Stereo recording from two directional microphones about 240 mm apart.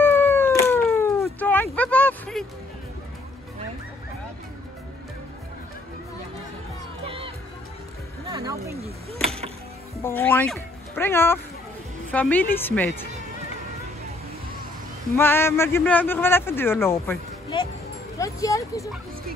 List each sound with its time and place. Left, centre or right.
0.0 s cat: centre
7.1 s music: right
8.3 s a sound: centre
10.0 s a man's voice: centre
15.1 s a man's voice: centre